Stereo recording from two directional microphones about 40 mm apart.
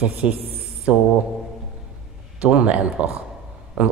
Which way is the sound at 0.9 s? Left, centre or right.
Right.